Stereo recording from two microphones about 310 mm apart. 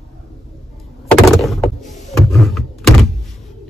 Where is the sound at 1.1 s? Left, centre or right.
Centre.